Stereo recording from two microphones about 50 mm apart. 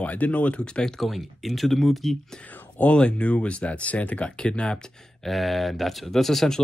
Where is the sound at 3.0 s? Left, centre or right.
Left.